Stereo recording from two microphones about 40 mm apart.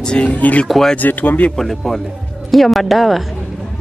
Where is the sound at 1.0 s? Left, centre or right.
Left.